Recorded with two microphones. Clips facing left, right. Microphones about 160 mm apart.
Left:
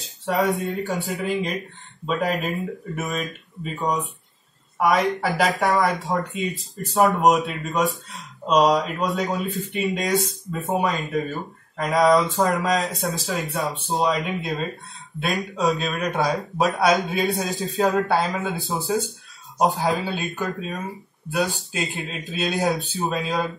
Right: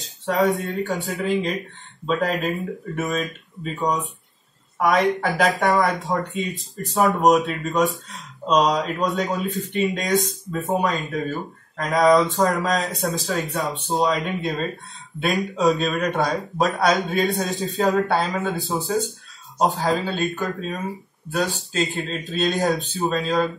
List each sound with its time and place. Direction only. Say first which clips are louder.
0.3 s speech: right 1 dB; centre (ahead or behind)
21.3 s speech: even; 15° left (ahead or behind)
22.3 s speech: right 2 dB; centre (ahead or behind)